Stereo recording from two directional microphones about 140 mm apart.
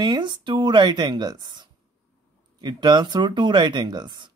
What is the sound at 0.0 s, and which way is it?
Speech, 35° right (ahead or behind).